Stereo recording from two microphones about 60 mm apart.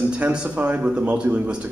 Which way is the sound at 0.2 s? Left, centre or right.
Centre.